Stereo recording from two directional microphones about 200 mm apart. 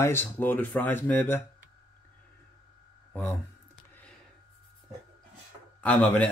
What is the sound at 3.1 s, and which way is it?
Speech, 10° left (ahead or behind).